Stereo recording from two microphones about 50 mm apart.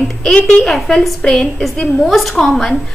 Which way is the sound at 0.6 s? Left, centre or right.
Centre.